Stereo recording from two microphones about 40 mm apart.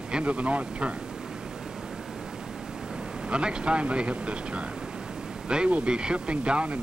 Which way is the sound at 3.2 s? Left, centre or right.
Right.